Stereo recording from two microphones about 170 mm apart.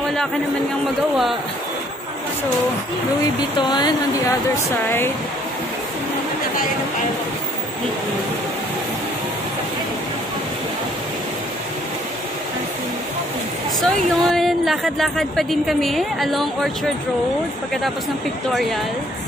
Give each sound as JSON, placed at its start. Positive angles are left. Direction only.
{"t": 3.5, "sound": "speech", "side_deg": 25}
{"t": 4.8, "sound": "speech", "side_deg": 15}
{"t": 13.7, "sound": "speech", "side_deg": 0}
{"t": 18.5, "sound": "speech", "side_deg": 0}